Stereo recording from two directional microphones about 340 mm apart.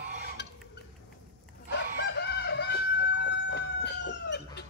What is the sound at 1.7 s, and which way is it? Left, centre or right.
Chicken, left.